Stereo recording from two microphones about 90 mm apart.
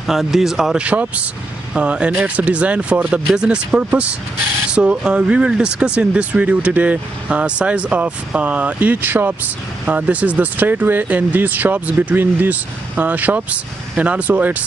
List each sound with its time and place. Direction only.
0.0 s speech: 5° right (ahead or behind)
0.8 s speech: 15° right (ahead or behind)